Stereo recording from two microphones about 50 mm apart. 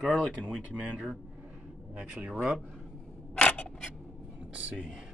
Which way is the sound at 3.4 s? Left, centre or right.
Left.